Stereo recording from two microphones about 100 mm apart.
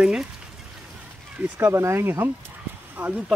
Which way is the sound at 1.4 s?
25° right (ahead or behind).